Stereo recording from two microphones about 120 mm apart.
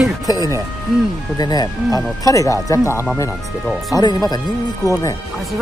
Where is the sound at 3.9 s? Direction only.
35° left (ahead or behind).